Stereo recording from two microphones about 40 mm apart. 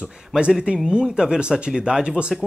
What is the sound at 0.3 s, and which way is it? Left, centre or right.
Speech, centre.